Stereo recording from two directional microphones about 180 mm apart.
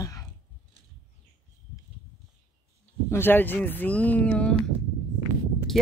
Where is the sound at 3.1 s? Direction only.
10° left (ahead or behind).